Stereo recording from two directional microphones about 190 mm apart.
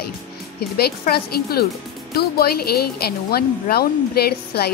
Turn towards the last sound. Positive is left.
turn(degrees=55)  # may be behind; listen again after turning